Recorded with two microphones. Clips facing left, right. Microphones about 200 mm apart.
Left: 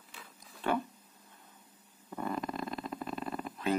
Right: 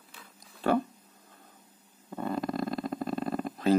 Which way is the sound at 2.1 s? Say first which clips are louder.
Right 4 dB; 30° right (ahead or behind).